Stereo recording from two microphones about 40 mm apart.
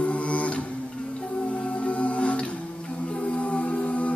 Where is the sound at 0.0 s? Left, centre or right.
Left.